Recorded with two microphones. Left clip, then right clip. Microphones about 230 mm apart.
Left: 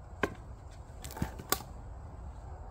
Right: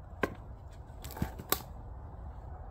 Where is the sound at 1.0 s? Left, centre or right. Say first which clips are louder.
Even; centre.